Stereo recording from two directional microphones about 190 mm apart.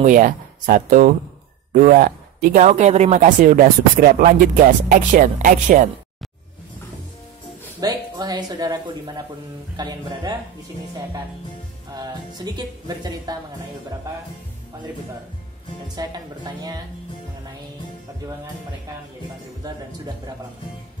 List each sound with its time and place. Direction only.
0.0 s speech: 45° right (ahead or behind)
7.8 s a woman's voice: 20° right (ahead or behind)
11.9 s a woman's voice: 20° right (ahead or behind)
16.0 s a woman's voice: 20° right (ahead or behind)